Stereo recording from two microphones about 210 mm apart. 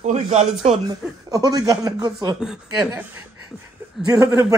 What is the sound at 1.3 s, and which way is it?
Speech, 15° right (ahead or behind).